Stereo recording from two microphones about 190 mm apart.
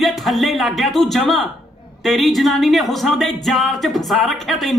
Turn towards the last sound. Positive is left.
turn(degrees=0)  # may be behind; listen again after turning